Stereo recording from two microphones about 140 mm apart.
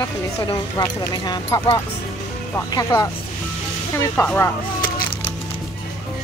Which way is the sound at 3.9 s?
20° left (ahead or behind).